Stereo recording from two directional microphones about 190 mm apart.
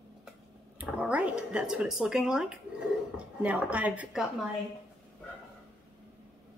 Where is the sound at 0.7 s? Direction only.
5° right (ahead or behind).